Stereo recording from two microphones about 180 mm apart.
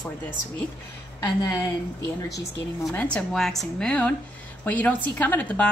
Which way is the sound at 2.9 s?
5° left (ahead or behind).